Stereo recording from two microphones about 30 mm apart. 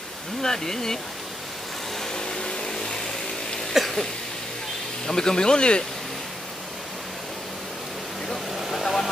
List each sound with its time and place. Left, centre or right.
0.4 s speech: centre
2.0 s vehicle: left
3.8 s a sound: centre
5.0 s speech: left
8.5 s vehicle: centre
8.8 s vehicle: centre